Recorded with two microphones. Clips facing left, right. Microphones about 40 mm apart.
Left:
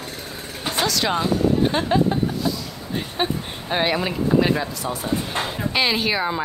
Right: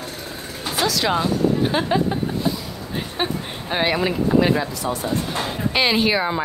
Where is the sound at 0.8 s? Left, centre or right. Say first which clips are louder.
Right 2 dB; centre.